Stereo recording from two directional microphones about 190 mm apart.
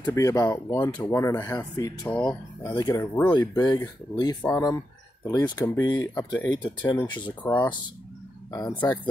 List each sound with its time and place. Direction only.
0.0 s speech: 15° left (ahead or behind)
6.9 s speech: 25° left (ahead or behind)